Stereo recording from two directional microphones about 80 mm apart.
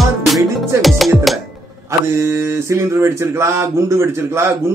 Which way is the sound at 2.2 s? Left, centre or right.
Right.